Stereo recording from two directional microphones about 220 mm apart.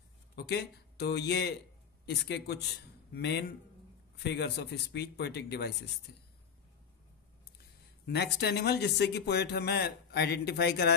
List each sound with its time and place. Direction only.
0.4 s speech: 45° left (ahead or behind)
8.1 s speech: 50° left (ahead or behind)